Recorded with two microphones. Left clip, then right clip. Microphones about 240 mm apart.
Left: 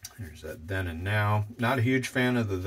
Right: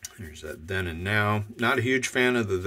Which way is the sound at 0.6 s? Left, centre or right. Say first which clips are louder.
Right 4 dB; right.